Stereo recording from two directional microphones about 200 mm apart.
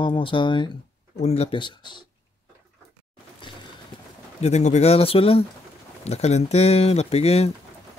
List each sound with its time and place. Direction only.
0.0 s speech: 25° left (ahead or behind)
4.4 s speech: 35° left (ahead or behind)